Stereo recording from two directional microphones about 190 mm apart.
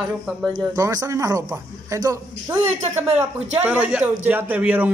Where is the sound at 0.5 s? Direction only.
20° right (ahead or behind).